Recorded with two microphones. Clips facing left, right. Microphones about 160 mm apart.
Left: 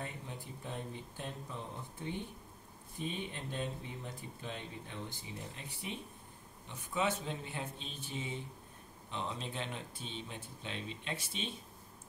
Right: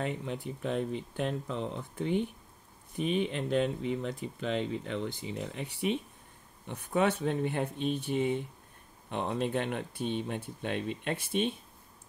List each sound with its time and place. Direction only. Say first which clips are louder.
0.0 s speech: right 11 dB; 85° right
6.7 s speech: right 7 dB; 60° right (ahead or behind)